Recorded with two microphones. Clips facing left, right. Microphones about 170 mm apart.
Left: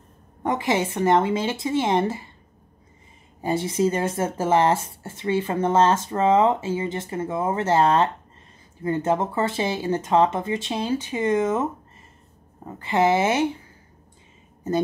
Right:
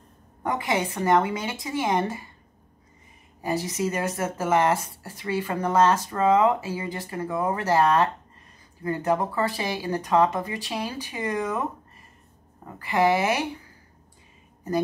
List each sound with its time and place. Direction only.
0.4 s speech: 25° left (ahead or behind)
3.3 s speech: 30° left (ahead or behind)
12.6 s speech: 25° left (ahead or behind)